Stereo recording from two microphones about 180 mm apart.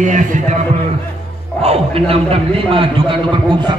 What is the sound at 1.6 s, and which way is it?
A man's voice, 35° right (ahead or behind).